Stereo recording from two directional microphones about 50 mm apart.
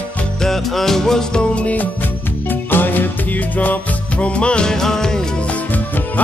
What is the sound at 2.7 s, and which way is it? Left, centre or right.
Music, left.